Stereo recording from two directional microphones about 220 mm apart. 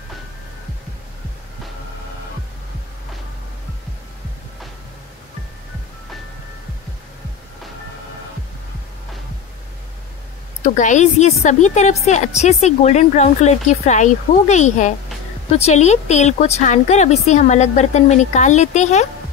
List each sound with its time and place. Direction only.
10.6 s a woman's voice: 35° left (ahead or behind)